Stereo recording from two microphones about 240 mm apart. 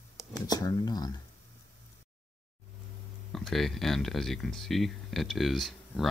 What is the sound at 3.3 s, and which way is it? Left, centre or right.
Speech, centre.